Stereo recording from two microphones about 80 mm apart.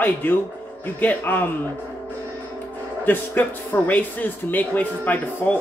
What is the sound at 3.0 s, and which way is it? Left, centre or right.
A man's voice, left.